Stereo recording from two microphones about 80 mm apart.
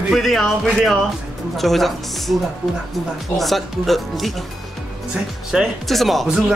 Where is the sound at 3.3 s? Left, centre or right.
Centre.